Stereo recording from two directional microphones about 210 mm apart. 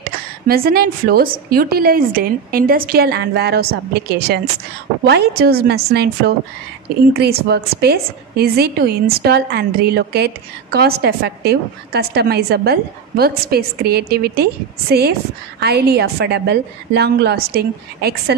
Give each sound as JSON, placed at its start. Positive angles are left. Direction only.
{"t": 0.0, "sound": "a woman's voice", "side_deg": -45}